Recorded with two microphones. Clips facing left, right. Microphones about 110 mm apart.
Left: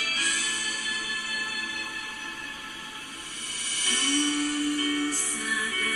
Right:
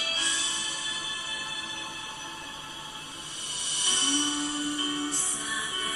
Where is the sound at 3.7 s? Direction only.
20° right (ahead or behind).